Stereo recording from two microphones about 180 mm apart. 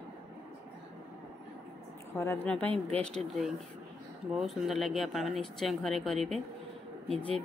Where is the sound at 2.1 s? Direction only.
15° left (ahead or behind).